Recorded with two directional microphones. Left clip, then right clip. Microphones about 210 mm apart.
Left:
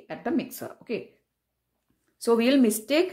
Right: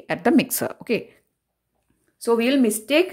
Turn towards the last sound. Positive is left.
turn(degrees=-5)  # may be behind; listen again after turning